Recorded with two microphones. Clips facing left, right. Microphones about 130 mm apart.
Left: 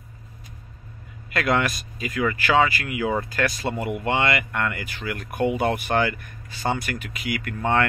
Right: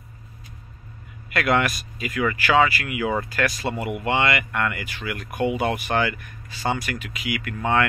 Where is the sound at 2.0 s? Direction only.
30° left (ahead or behind).